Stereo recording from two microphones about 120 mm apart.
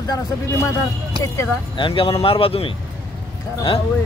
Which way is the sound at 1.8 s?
45° left (ahead or behind).